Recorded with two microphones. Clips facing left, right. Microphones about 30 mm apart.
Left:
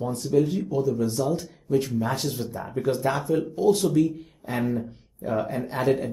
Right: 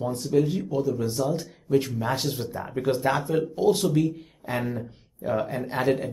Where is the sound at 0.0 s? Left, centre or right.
Centre.